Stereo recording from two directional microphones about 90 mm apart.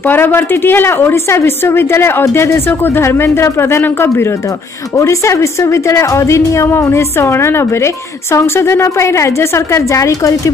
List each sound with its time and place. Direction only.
0.0 s a woman's voice: 25° left (ahead or behind); by 10.5 s 40° left (ahead or behind)